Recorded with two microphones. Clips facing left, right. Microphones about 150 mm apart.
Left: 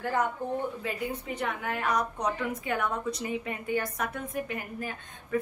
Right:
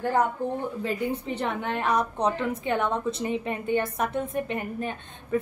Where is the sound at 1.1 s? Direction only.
30° right (ahead or behind).